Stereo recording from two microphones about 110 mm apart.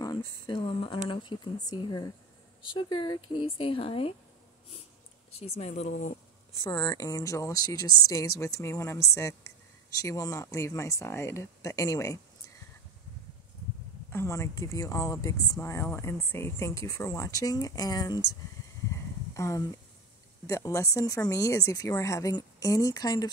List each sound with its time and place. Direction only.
0.0 s speech: 45° left (ahead or behind)
5.3 s speech: 70° left (ahead or behind); by 5.9 s 90° left
6.6 s speech: 40° left (ahead or behind)
14.1 s speech: 25° left (ahead or behind)
19.3 s speech: 30° left (ahead or behind)